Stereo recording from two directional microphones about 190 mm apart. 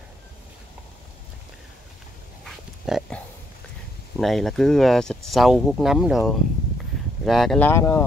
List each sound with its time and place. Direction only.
2.4 s dog: centre (ahead or behind)
4.2 s speech: centre (ahead or behind)